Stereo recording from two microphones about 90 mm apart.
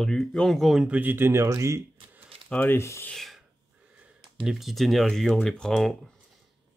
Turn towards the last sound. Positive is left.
turn(degrees=5)  # may be behind; listen again after turning